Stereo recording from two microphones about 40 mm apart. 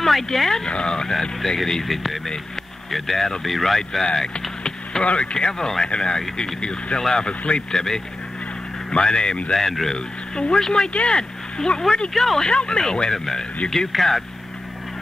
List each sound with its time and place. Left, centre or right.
0.0 s speech: centre
0.7 s speech: left
1.6 s speech: centre
4.0 s speech: centre
7.2 s speech: left
7.7 s speech: centre
9.0 s speech: centre
9.5 s speech: centre
9.9 s speech: left
12.1 s speech: centre
12.4 s speech: left